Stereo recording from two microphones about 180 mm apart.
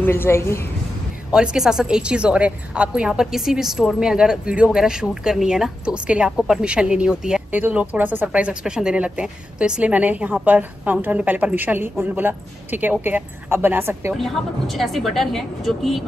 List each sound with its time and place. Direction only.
0.0 s a woman's voice: 10° left (ahead or behind)
1.3 s a woman's voice: 5° right (ahead or behind)
14.1 s a woman's voice: centre (ahead or behind)